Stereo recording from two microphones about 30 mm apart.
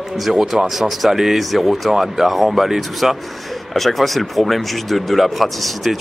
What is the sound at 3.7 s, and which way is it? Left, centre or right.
Speech, centre.